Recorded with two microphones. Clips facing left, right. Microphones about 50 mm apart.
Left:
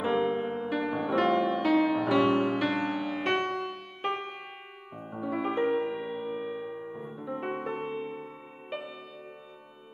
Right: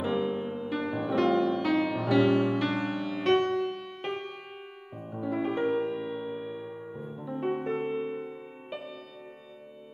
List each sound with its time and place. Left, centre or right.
0.0 s music: left
0.7 s music: centre
3.3 s music: left
4.0 s music: centre
7.6 s music: centre